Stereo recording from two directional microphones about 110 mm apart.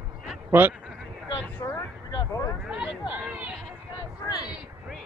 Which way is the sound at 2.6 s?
10° right (ahead or behind).